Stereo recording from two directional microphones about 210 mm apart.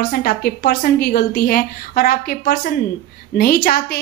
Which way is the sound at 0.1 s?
45° left (ahead or behind).